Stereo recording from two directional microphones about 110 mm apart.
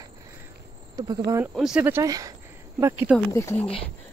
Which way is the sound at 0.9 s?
35° right (ahead or behind).